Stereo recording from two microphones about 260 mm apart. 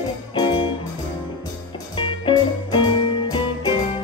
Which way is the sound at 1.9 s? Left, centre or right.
Centre.